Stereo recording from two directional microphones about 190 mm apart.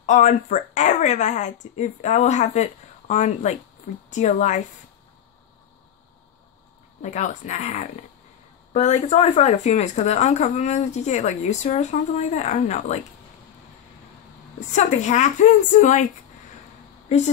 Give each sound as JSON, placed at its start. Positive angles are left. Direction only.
{"t": 0.0, "sound": "speech", "side_deg": 40}
{"t": 7.0, "sound": "speech", "side_deg": 40}
{"t": 14.7, "sound": "speech", "side_deg": 40}